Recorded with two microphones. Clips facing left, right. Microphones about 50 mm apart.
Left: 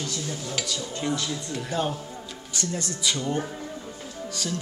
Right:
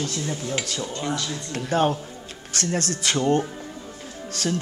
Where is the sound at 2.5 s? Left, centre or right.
Right.